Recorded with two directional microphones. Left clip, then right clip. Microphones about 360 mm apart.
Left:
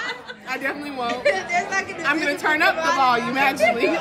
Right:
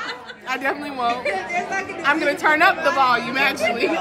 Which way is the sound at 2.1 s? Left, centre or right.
Centre.